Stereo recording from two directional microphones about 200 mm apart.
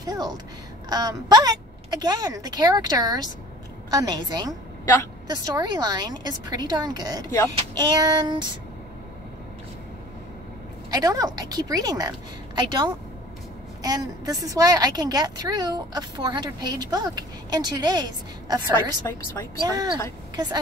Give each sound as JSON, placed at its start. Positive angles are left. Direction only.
{"t": 0.0, "sound": "a woman's voice", "side_deg": -20}
{"t": 10.9, "sound": "a woman's voice", "side_deg": -20}
{"t": 19.6, "sound": "a woman's voice", "side_deg": -20}